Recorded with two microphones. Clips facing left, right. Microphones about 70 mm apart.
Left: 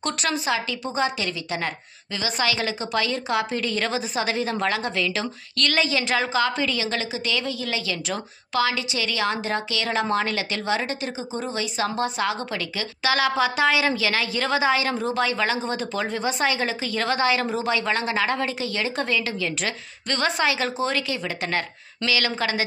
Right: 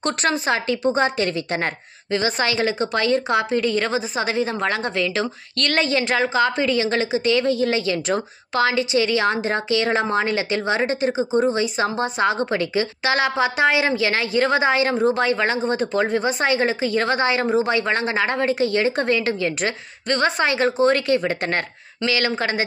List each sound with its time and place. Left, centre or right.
0.0 s a woman's voice: right